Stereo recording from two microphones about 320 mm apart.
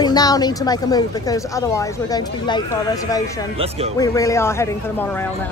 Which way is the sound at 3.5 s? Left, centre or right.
Centre.